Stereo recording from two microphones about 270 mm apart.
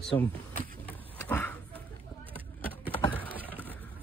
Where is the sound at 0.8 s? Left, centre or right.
Centre.